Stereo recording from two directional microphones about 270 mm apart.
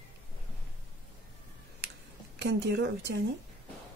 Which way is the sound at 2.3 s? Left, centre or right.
Right.